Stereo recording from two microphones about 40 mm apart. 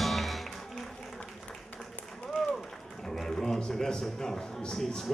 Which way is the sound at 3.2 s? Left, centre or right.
Centre.